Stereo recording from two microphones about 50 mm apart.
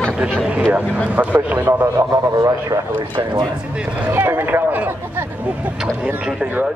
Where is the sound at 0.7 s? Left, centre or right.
Right.